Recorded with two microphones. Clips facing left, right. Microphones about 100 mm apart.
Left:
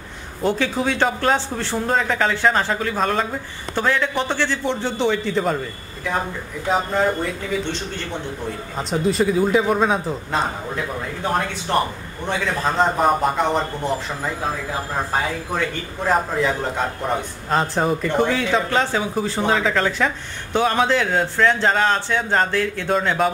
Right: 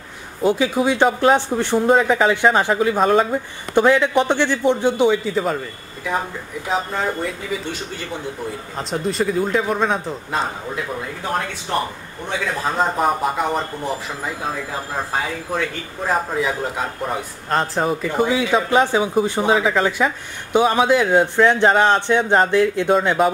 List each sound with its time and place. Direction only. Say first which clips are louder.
0.4 s a man's voice: right 3 dB; 10° right (ahead or behind)
8.7 s a man's voice: left 2 dB; centre (ahead or behind)
12.3 s a man's voice: left 1 dB; 5° right (ahead or behind)
16.1 s a man's voice: left 1 dB; 5° right (ahead or behind)
22.9 s a man's voice: right 1 dB; 5° right (ahead or behind)